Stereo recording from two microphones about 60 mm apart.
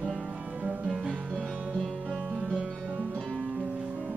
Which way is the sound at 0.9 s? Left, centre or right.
Centre.